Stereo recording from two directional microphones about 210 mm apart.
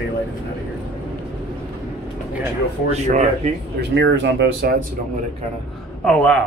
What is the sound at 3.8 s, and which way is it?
Speech, 55° right (ahead or behind).